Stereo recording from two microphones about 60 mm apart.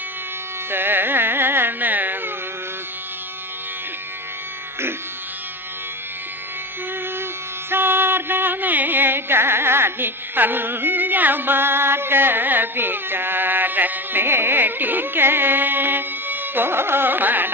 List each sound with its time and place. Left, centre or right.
0.7 s carnatic music: right
7.7 s music: right